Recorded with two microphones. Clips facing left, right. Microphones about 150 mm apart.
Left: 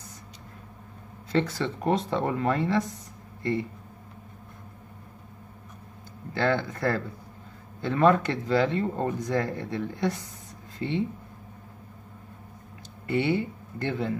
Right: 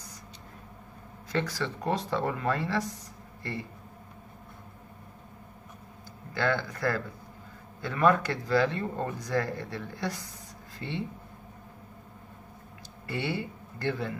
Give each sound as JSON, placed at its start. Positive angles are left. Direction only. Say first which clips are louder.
{"t": 1.3, "sound": "speech", "louder": "left 5 dB", "side_deg": 25}
{"t": 6.3, "sound": "speech", "louder": "left 3 dB", "side_deg": 25}
{"t": 13.0, "sound": "speech", "louder": "left 7 dB", "side_deg": 20}